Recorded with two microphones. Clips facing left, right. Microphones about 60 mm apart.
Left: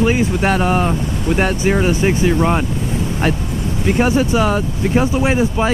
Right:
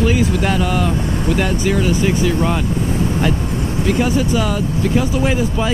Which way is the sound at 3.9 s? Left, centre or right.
Left.